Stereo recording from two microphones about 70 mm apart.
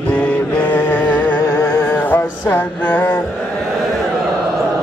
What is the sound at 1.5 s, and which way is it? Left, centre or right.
Music, left.